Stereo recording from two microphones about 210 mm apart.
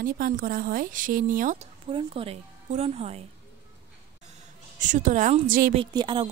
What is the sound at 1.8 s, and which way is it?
A woman's voice, 25° right (ahead or behind).